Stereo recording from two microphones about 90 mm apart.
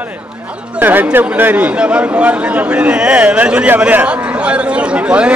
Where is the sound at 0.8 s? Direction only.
20° right (ahead or behind).